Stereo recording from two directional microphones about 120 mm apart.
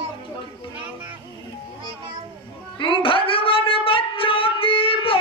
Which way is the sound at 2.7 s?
45° left (ahead or behind).